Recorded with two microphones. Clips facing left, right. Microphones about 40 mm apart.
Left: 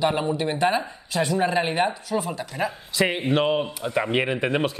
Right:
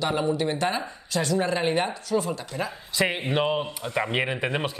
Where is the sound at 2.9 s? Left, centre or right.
Centre.